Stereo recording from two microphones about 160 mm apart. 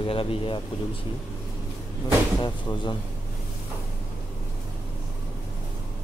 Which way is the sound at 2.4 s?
30° left (ahead or behind).